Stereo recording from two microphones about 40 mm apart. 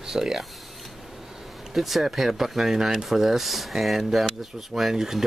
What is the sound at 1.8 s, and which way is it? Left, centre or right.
Speech, centre.